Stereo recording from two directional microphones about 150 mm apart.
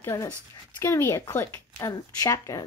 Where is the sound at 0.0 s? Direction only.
20° left (ahead or behind).